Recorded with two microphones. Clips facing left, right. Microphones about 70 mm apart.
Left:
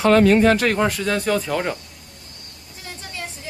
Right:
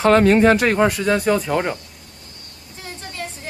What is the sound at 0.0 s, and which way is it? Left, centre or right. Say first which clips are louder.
Speech: right 1 dB; right.